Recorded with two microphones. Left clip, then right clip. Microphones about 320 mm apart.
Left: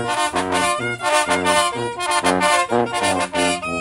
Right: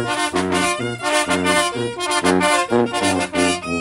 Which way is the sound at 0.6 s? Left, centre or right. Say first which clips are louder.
Left 1 dB; centre.